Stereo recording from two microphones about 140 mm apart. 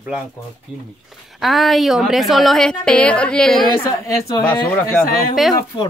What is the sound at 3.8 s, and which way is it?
Speech, 25° left (ahead or behind).